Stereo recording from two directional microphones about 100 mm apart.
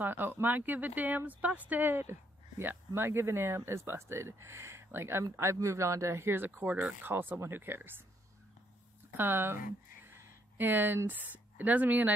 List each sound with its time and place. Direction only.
0.0 s speech: 20° right (ahead or behind)
9.1 s a woman's voice: 20° right (ahead or behind)